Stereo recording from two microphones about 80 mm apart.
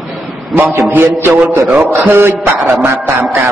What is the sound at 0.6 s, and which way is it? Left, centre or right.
A man's voice, right.